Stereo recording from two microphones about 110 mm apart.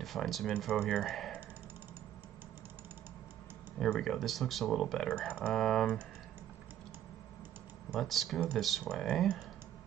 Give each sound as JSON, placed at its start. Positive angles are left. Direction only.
{"t": 0.0, "sound": "speech", "side_deg": 0}
{"t": 3.8, "sound": "speech", "side_deg": 0}
{"t": 7.9, "sound": "speech", "side_deg": 0}